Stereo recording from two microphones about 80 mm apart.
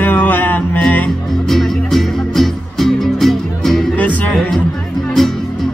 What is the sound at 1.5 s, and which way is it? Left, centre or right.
Music, centre.